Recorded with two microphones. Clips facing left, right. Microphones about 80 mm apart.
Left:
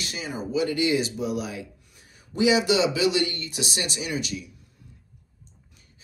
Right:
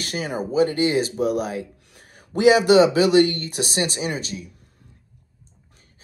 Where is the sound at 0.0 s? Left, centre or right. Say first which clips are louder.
Right 6 dB; right.